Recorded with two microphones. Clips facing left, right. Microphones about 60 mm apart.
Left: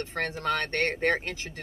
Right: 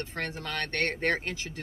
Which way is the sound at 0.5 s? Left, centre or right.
Left.